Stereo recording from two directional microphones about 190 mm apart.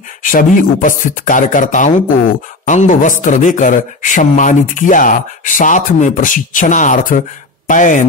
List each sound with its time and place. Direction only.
0.2 s speech: 45° left (ahead or behind)